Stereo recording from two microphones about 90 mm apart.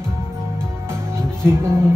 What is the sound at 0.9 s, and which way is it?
Music, 30° right (ahead or behind).